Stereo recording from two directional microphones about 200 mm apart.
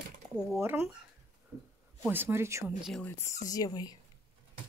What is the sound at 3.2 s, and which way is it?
Speech, 15° left (ahead or behind).